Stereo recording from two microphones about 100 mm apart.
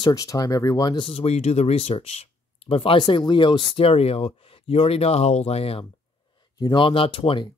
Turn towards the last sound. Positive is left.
turn(degrees=60)  # may be behind; listen again after turning